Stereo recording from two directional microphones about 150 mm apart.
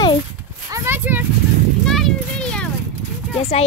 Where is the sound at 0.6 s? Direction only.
20° right (ahead or behind).